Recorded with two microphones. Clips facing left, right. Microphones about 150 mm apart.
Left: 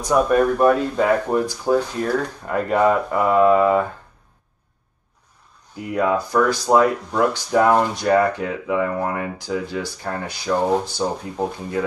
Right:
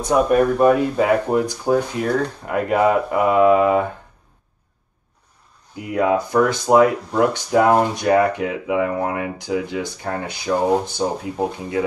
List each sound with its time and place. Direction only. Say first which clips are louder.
0.0 s speech: right 1 dB; 20° right (ahead or behind)
5.8 s speech: right 2 dB; 20° right (ahead or behind)